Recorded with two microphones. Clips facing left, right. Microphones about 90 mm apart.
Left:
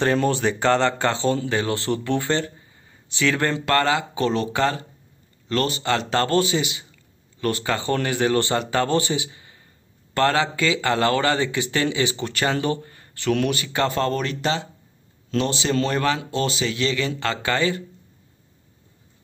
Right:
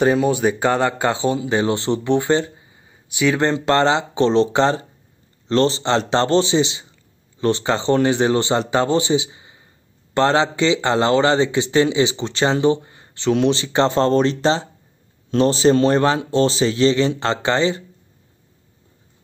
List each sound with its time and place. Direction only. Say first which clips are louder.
0.0 s a man's voice: right 4 dB; 10° right (ahead or behind)